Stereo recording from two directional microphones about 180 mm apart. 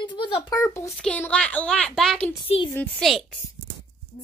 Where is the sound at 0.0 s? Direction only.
25° left (ahead or behind).